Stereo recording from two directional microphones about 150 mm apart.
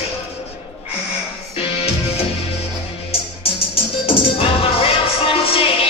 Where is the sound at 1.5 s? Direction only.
40° left (ahead or behind).